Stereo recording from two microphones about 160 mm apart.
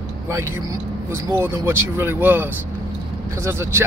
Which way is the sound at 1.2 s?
15° right (ahead or behind).